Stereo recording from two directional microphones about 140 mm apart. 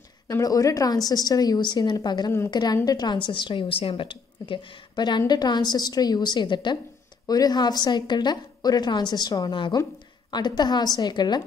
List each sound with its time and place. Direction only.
0.3 s a woman's voice: 25° left (ahead or behind)